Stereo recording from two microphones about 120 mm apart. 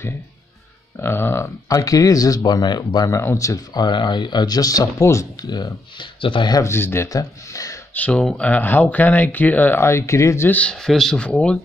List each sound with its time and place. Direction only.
1.0 s speech: 20° left (ahead or behind); by 6.6 s 40° left (ahead or behind)
6.6 s speech: 20° left (ahead or behind)
7.9 s speech: 15° left (ahead or behind)